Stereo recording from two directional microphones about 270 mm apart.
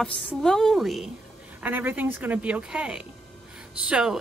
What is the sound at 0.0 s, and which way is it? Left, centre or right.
Speech, centre.